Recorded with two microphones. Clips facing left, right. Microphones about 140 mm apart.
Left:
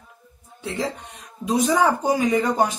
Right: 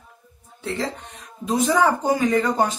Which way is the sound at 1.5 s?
15° left (ahead or behind).